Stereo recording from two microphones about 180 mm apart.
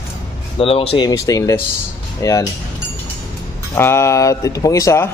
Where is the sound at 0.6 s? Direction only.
30° left (ahead or behind).